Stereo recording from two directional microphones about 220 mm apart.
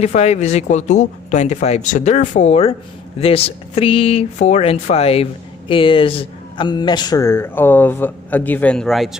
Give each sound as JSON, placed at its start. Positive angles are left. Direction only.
{"t": 0.0, "sound": "speech", "side_deg": 30}